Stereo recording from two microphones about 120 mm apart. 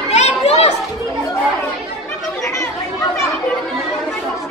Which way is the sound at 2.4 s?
25° left (ahead or behind).